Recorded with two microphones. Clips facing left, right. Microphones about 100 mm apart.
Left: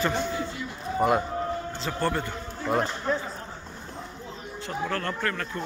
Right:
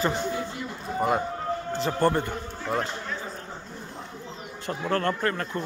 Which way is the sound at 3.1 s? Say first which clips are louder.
Left 8 dB; 40° left (ahead or behind).